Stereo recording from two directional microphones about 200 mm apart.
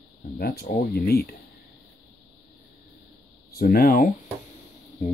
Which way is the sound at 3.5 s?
45° left (ahead or behind).